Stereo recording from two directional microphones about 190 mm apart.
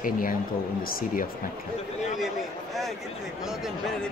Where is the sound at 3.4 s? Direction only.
Centre (ahead or behind).